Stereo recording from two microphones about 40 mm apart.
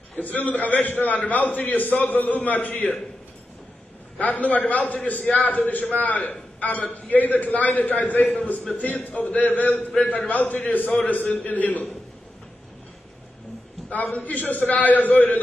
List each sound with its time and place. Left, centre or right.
0.1 s a man's voice: left
4.2 s a man's voice: left
13.8 s a man's voice: left